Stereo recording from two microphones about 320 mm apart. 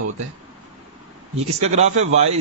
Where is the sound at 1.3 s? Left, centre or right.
Centre.